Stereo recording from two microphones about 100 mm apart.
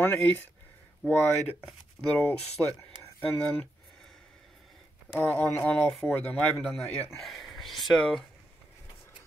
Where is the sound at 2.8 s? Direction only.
15° left (ahead or behind).